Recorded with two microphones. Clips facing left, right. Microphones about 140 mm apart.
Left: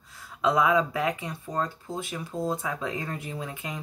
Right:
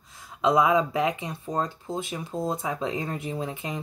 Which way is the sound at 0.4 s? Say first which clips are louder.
Right 2 dB; 20° right (ahead or behind).